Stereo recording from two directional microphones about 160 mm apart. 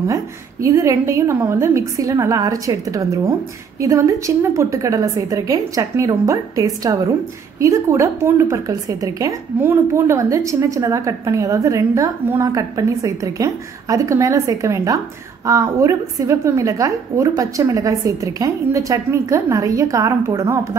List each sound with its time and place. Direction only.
0.1 s a woman's voice: 20° right (ahead or behind)